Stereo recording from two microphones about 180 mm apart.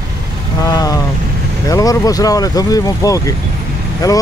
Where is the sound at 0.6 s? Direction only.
20° left (ahead or behind).